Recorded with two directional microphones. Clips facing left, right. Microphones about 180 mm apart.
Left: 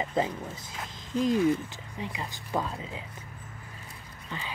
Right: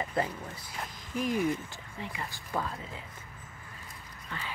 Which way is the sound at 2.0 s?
20° left (ahead or behind).